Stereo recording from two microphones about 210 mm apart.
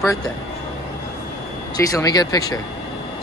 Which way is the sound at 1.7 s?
15° left (ahead or behind).